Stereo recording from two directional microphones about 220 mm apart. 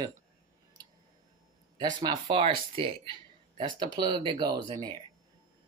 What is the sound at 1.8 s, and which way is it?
Speech, 20° right (ahead or behind).